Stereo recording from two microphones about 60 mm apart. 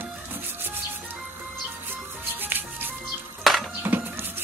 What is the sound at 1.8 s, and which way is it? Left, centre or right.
Music, right.